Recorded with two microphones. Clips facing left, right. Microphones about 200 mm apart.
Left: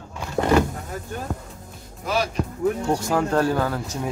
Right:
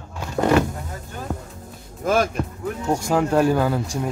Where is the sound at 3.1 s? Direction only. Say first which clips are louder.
Right 4 dB; 10° right (ahead or behind).